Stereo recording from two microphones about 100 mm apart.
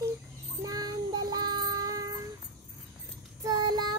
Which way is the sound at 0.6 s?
40° right (ahead or behind).